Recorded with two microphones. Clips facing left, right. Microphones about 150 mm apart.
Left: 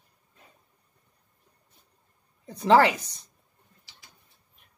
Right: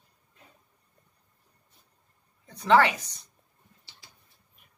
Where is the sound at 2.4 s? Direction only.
30° left (ahead or behind).